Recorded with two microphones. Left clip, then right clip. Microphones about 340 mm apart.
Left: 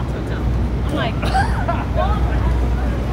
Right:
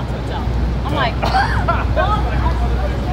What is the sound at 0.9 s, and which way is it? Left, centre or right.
Vehicle, right.